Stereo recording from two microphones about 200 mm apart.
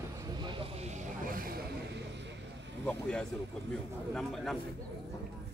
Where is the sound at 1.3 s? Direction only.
50° right (ahead or behind).